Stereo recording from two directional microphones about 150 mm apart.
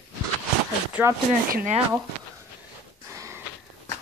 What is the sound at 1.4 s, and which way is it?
Speech, 70° right (ahead or behind).